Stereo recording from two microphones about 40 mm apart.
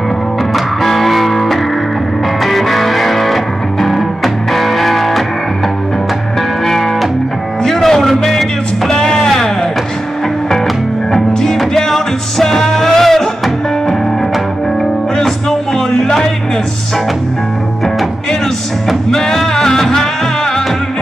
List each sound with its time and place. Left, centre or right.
0.8 s music: centre
6.6 s music: centre
8.9 s music: centre
11.1 s music: centre
15.9 s music: centre
19.0 s music: centre